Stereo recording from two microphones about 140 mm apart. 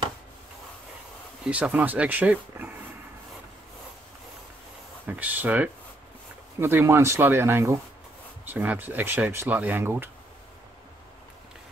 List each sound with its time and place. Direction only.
1.4 s speech: 10° right (ahead or behind)
5.0 s speech: 10° right (ahead or behind)